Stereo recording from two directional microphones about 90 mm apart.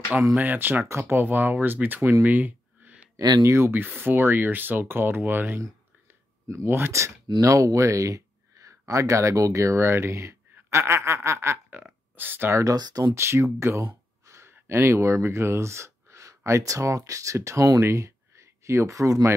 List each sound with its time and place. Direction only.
0.4 s speech: 20° right (ahead or behind)
2.2 s a sound: 20° right (ahead or behind)
3.2 s speech: 55° right (ahead or behind)
3.4 s speech: 25° right (ahead or behind)
6.4 s a sound: 30° right (ahead or behind)
7.4 s speech: 40° right (ahead or behind)
10.7 s a sound: 30° right (ahead or behind)
12.2 s speech: 25° right (ahead or behind)
12.7 s speech: 50° right (ahead or behind)
13.1 s speech: 30° right (ahead or behind)